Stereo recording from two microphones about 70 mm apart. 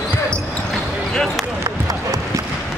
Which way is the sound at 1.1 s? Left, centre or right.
Centre.